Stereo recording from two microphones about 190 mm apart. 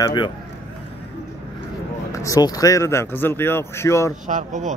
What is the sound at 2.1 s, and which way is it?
Speech, 15° left (ahead or behind).